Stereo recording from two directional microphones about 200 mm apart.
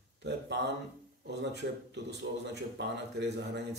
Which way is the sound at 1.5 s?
60° right (ahead or behind).